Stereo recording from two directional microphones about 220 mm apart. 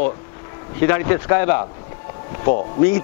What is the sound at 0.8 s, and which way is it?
A man's voice, 20° left (ahead or behind).